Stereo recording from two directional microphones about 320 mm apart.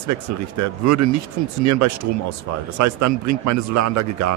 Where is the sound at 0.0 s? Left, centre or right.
Right.